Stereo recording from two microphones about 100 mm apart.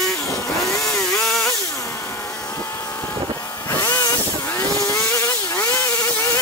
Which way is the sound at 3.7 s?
35° left (ahead or behind).